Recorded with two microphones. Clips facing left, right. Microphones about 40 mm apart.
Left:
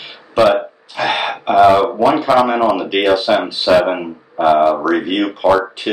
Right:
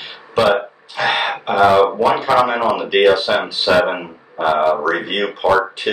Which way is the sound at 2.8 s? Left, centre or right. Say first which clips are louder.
Even; centre.